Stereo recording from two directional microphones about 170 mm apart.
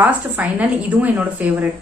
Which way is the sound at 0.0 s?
10° right (ahead or behind).